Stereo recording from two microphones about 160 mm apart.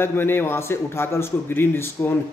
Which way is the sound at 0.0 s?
15° left (ahead or behind).